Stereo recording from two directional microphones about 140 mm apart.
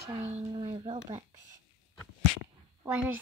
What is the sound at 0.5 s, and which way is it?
Speech, 35° right (ahead or behind).